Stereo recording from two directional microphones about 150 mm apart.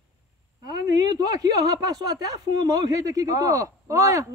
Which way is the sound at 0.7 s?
25° right (ahead or behind).